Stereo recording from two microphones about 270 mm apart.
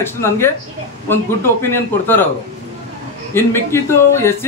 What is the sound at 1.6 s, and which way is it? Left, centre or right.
Speech, centre.